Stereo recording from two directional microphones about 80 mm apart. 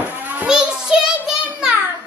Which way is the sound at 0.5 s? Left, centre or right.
Centre.